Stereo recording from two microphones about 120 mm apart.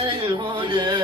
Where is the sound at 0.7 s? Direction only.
40° right (ahead or behind).